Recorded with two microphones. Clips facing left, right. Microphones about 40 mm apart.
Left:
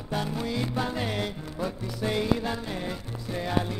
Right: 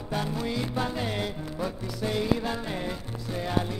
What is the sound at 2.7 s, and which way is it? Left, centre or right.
Music, centre.